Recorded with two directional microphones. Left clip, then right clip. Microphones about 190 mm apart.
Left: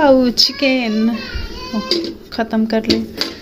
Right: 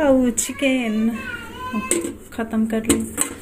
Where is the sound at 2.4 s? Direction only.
15° left (ahead or behind).